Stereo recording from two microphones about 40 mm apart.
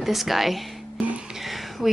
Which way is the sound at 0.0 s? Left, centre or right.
Centre.